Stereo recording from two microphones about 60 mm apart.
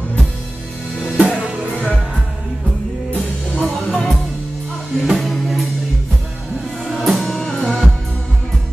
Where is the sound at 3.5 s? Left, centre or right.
Centre.